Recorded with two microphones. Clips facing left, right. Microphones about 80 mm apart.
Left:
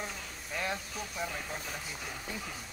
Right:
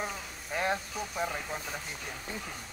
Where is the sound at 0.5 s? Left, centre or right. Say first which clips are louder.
Right 5 dB; right.